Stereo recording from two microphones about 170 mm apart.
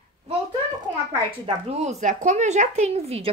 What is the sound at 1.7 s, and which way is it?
Speech, 40° right (ahead or behind).